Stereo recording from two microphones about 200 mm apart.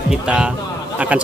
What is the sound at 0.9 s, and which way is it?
Speech, 5° right (ahead or behind).